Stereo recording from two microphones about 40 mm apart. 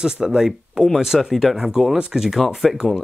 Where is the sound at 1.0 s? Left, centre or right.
Centre.